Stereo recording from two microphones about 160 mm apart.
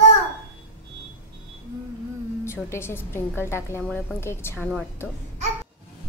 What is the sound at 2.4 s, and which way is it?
Speech, 15° left (ahead or behind).